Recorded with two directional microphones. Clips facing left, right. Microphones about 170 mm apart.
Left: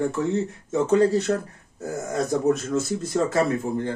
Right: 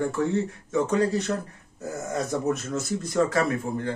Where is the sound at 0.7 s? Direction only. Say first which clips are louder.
Left 4 dB; 25° left (ahead or behind).